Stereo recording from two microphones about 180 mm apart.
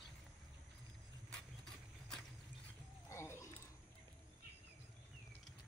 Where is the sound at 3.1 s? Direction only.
15° left (ahead or behind).